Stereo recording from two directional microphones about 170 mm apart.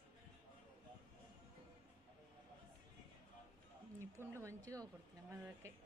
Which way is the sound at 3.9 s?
15° right (ahead or behind).